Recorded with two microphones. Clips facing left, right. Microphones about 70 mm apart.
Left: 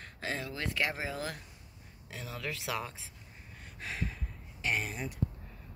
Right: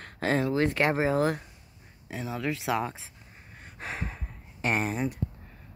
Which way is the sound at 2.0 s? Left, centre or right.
Right.